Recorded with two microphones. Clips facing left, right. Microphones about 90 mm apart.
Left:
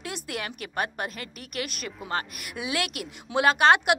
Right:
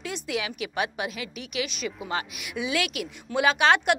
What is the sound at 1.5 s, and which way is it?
Speech, 55° left (ahead or behind).